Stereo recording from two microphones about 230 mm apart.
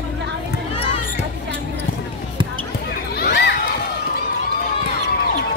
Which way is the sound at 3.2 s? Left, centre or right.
Left.